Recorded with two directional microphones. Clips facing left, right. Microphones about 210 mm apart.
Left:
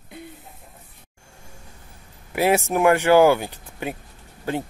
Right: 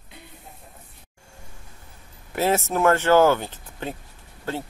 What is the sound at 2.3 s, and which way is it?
Speech, 15° left (ahead or behind).